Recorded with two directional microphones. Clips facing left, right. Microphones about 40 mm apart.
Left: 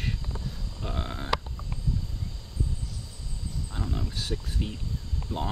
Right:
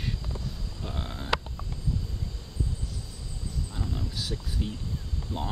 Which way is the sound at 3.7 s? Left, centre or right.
Centre.